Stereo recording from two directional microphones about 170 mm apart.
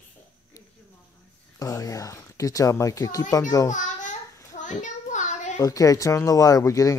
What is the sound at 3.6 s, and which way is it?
Babbling, 45° left (ahead or behind).